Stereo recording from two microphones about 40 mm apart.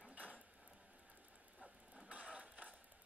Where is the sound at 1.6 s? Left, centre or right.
Right.